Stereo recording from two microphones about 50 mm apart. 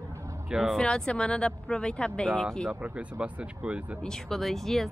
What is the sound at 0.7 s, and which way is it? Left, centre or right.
A woman's voice, centre.